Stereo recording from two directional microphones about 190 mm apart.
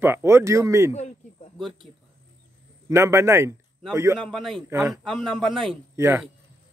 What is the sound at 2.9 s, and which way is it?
Speech, 15° right (ahead or behind).